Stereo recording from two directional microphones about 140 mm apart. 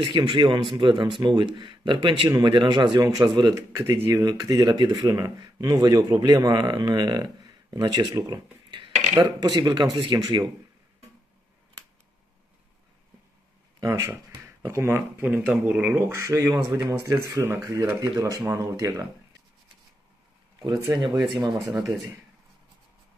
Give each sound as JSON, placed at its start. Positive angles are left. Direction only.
{"t": 0.0, "sound": "a man's voice", "side_deg": -35}
{"t": 13.7, "sound": "speech", "side_deg": -25}
{"t": 20.6, "sound": "speech", "side_deg": -30}